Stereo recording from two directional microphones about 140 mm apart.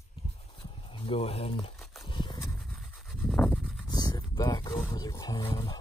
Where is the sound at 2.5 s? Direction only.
10° left (ahead or behind).